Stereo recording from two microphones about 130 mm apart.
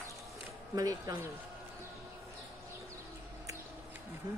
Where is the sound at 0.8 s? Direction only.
30° right (ahead or behind).